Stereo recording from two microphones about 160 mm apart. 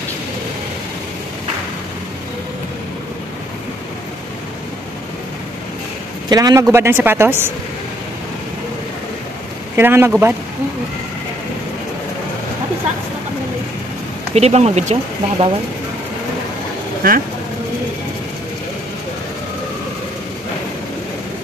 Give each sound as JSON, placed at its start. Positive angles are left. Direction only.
{"t": 6.2, "sound": "a woman's voice", "side_deg": -25}
{"t": 9.8, "sound": "a woman's voice", "side_deg": -15}
{"t": 14.3, "sound": "speech", "side_deg": -40}
{"t": 17.0, "sound": "speech", "side_deg": -65}